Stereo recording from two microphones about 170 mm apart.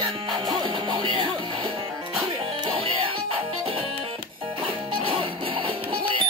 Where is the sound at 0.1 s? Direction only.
30° right (ahead or behind).